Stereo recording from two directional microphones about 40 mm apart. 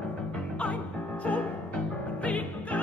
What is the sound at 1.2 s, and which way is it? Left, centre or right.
Music, left.